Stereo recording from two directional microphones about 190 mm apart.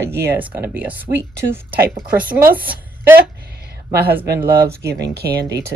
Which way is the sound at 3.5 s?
55° right (ahead or behind).